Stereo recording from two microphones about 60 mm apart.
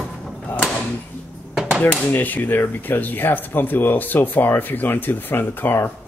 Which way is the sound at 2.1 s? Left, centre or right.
Left.